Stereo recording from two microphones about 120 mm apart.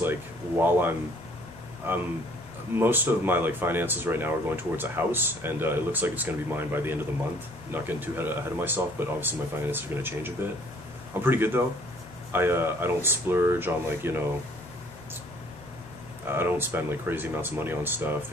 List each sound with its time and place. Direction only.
0.6 s speech: 15° right (ahead or behind)
16.3 s speech: 20° right (ahead or behind)